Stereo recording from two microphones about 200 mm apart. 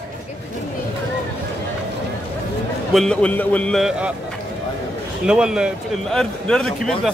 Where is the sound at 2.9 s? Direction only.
5° left (ahead or behind).